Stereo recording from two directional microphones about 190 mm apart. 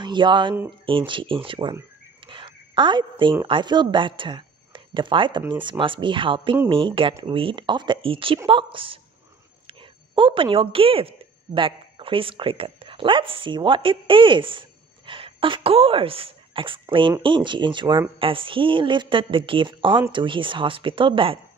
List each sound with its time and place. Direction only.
0.0 s a woman's voice: 25° right (ahead or behind)
2.2 s a sound: 25° right (ahead or behind)
3.4 s a woman's voice: 25° right (ahead or behind)